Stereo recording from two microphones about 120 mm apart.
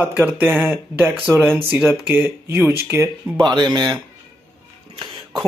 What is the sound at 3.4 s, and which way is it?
Speech, 35° right (ahead or behind).